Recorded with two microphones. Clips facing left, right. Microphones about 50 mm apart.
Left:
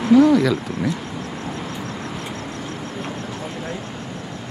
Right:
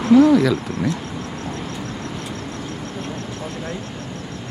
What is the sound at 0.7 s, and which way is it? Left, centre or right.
Speech, centre.